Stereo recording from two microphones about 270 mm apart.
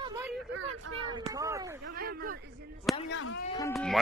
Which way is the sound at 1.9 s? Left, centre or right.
Right.